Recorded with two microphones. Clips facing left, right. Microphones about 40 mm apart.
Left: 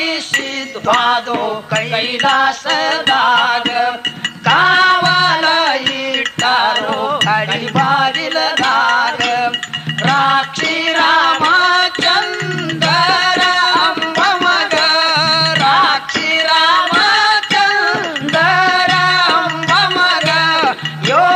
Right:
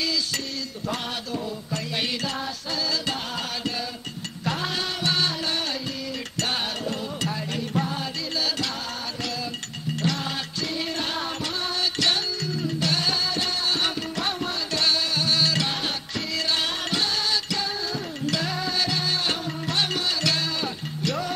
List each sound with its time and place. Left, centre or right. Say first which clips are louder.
0.8 s music: left 19 dB; left
2.2 s music: left 18 dB; left
12.0 s music: left 11 dB; left
14.1 s music: left 16 dB; left